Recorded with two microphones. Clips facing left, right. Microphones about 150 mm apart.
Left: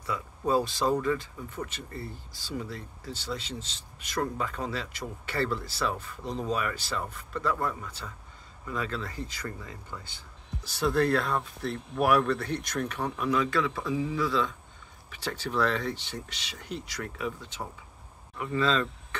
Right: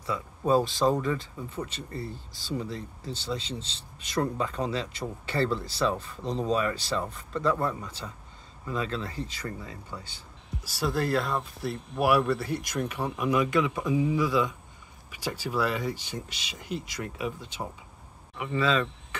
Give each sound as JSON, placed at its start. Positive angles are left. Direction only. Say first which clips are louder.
{"t": 0.1, "sound": "speech", "louder": "right 2 dB", "side_deg": -20}
{"t": 10.7, "sound": "speech", "louder": "left 2 dB", "side_deg": -5}